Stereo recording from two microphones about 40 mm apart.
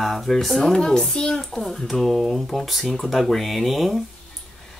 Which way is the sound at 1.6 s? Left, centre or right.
Centre.